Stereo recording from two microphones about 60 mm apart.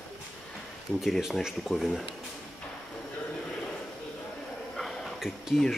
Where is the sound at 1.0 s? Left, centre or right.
Centre.